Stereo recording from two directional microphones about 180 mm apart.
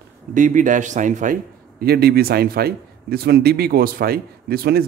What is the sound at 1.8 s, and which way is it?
A man's voice, 60° right (ahead or behind).